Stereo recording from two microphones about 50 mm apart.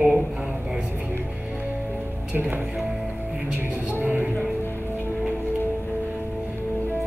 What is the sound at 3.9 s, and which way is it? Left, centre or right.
Music, right.